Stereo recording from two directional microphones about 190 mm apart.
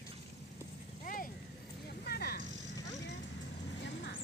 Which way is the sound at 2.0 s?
55° left (ahead or behind).